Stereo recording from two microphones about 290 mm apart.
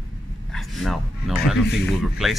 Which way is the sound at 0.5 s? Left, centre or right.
Centre.